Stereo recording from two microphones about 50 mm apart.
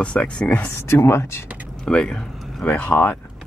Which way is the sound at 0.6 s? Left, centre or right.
Left.